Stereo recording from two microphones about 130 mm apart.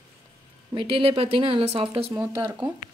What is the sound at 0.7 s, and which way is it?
Speech, 45° right (ahead or behind).